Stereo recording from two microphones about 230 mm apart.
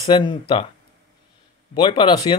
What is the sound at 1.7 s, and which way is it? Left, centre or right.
Speech, left.